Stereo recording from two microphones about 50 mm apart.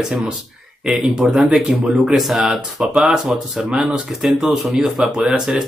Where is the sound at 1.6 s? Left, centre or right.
Right.